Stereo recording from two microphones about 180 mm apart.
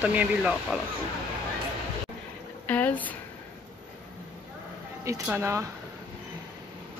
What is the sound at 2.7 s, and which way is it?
Speech, 10° left (ahead or behind).